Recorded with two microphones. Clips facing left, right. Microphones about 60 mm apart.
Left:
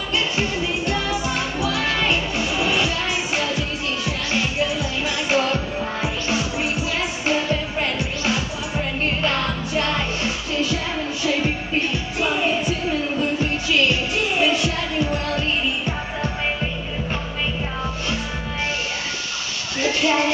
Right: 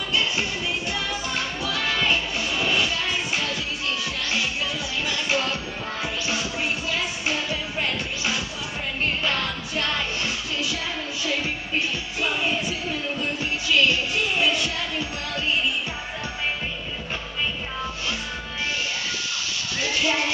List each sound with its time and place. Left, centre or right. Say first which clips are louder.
0.1 s music: left 3 dB; centre
7.2 s music of asia: left 8 dB; centre
9.2 s music: left 4 dB; centre
19.8 s a sound: left 5 dB; centre